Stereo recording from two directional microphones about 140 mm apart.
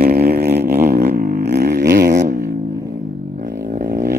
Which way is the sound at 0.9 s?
90° right.